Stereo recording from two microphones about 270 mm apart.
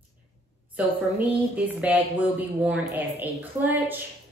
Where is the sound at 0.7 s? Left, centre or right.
Centre.